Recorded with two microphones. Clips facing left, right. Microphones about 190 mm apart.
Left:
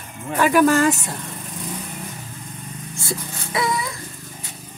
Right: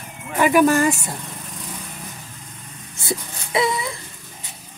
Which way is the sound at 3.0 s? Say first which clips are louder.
Right 2 dB; 25° right (ahead or behind).